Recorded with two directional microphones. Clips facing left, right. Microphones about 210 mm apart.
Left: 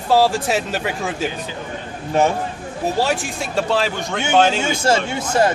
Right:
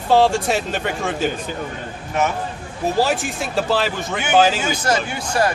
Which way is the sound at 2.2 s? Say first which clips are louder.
Left 4 dB; 30° left (ahead or behind).